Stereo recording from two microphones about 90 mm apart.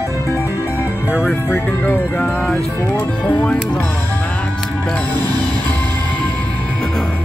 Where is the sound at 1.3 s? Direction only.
20° left (ahead or behind).